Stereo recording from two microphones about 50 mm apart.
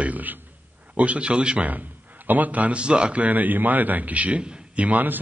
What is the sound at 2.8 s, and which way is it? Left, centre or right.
A man's voice, centre.